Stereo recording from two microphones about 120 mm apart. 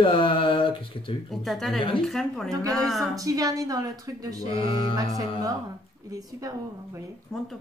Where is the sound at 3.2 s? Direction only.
30° right (ahead or behind).